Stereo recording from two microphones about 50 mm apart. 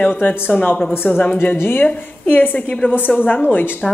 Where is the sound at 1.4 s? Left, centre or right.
Left.